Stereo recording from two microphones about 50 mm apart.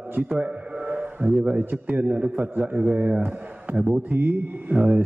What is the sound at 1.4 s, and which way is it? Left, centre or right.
Speech, right.